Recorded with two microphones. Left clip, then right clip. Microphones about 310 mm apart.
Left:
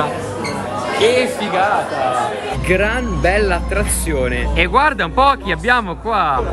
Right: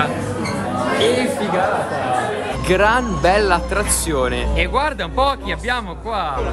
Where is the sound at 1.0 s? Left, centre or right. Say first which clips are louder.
Left 5 dB; centre.